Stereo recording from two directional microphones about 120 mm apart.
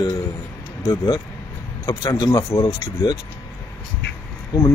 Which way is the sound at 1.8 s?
30° left (ahead or behind).